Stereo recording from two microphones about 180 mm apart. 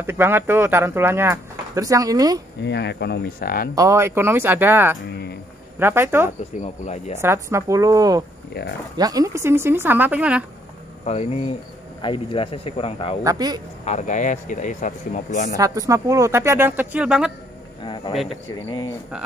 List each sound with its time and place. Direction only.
0.0 s speech: 10° right (ahead or behind)
2.6 s speech: 70° left (ahead or behind)
3.7 s speech: 15° right (ahead or behind)
5.1 s a sound: 60° left (ahead or behind)
5.8 s speech: 10° right (ahead or behind)
6.6 s speech: 40° left (ahead or behind)
7.2 s speech: 15° right (ahead or behind)
11.1 s speech: 35° left (ahead or behind)
13.2 s speech: 20° right (ahead or behind)
13.8 s speech: 40° left (ahead or behind)
15.5 s speech: 20° right (ahead or behind)
17.8 s a sound: 25° left (ahead or behind)
18.1 s speech: centre (ahead or behind)
18.7 s speech: 20° left (ahead or behind)